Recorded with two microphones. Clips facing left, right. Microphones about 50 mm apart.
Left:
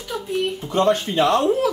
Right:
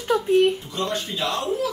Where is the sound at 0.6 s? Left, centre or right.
Left.